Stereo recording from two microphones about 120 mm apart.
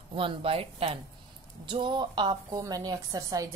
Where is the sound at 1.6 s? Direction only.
40° right (ahead or behind).